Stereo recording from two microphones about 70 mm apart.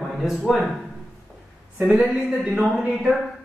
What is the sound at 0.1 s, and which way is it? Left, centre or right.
Speech, centre.